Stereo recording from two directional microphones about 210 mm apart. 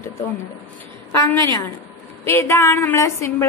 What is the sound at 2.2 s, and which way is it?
A woman's voice, 10° left (ahead or behind).